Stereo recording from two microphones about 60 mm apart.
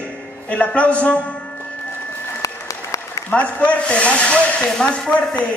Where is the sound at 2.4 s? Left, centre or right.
Left.